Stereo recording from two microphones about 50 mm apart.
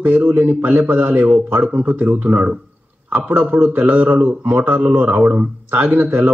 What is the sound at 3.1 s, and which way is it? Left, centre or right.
Speech, right.